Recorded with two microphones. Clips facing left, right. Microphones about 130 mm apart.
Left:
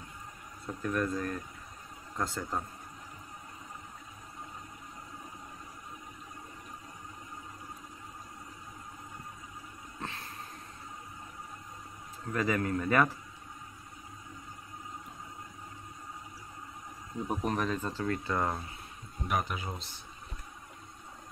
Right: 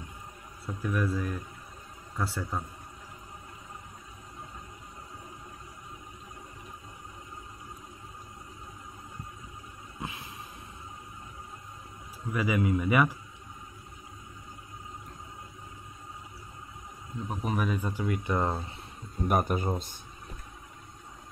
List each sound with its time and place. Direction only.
0.7 s speech: 5° right (ahead or behind)
9.9 s a sound: 10° right (ahead or behind)
12.3 s speech: 10° right (ahead or behind)
17.3 s speech: 5° right (ahead or behind); by 18.7 s 20° right (ahead or behind)
19.2 s speech: 45° right (ahead or behind)